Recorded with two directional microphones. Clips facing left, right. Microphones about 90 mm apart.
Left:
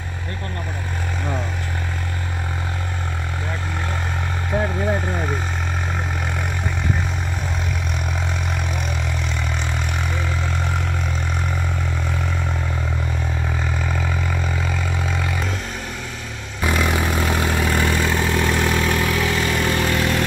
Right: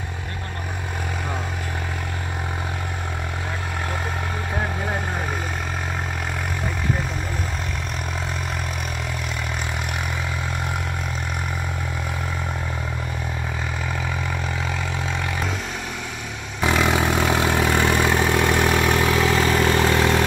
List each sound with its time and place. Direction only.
16.6 s vehicle: 20° right (ahead or behind)
19.2 s vehicle: 35° right (ahead or behind)